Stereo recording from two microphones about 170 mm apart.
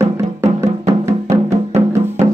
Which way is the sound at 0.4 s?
20° right (ahead or behind).